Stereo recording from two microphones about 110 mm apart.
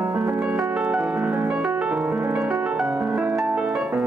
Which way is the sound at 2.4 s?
5° right (ahead or behind).